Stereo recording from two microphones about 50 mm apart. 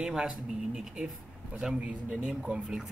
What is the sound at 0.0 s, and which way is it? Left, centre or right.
Speech, centre.